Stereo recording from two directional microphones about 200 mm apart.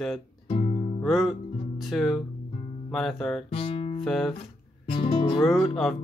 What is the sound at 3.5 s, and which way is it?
Music, 25° left (ahead or behind).